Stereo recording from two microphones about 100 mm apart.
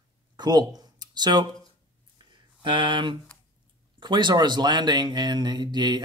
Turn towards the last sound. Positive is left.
turn(degrees=-45)  # may be behind; listen again after turning